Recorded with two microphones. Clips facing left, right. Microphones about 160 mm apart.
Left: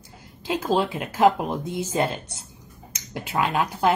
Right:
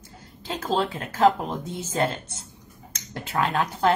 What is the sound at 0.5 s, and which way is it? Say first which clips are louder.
A woman's voice: left 3 dB; 10° left (ahead or behind).